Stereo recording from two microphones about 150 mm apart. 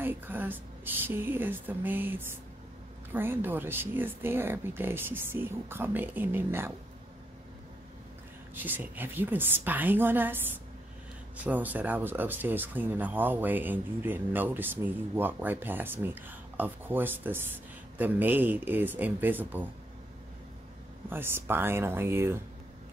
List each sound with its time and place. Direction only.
0.0 s speech: 10° right (ahead or behind)
8.5 s speech: 10° right (ahead or behind)
21.1 s speech: 15° right (ahead or behind)